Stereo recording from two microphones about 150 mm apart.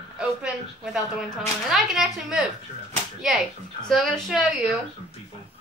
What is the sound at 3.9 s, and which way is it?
Speech, centre (ahead or behind).